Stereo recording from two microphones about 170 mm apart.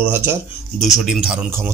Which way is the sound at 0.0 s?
15° right (ahead or behind).